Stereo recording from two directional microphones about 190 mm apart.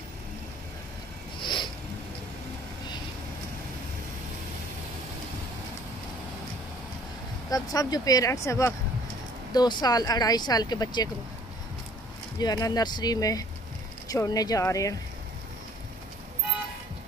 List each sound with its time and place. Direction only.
1.4 s a sound: 25° left (ahead or behind)
7.4 s speech: 20° left (ahead or behind)
12.4 s speech: 20° left (ahead or behind)